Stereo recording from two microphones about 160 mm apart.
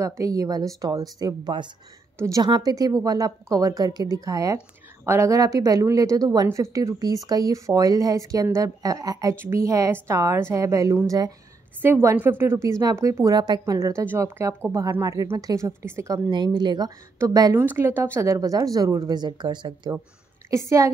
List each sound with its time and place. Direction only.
0.0 s a woman's voice: 20° right (ahead or behind)
17.6 s a woman's voice: 15° right (ahead or behind)